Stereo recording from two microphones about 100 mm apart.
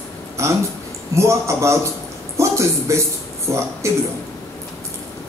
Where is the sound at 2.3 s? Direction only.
30° right (ahead or behind).